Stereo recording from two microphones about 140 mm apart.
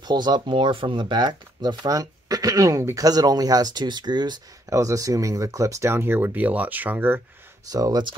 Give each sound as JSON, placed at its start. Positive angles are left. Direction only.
{"t": 0.0, "sound": "speech", "side_deg": -30}
{"t": 7.7, "sound": "speech", "side_deg": -25}